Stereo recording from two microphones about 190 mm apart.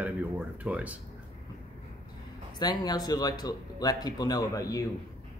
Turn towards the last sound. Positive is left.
turn(degrees=20)  # may be behind; listen again after turning